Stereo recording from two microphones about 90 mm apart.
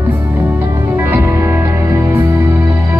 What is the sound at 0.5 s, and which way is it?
Music, 25° right (ahead or behind).